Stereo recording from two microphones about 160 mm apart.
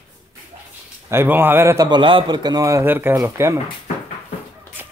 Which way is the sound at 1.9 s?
30° right (ahead or behind).